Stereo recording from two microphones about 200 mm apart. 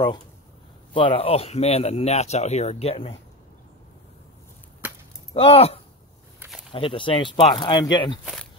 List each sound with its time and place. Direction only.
0.9 s speech: 25° left (ahead or behind)
5.3 s speech: 30° left (ahead or behind)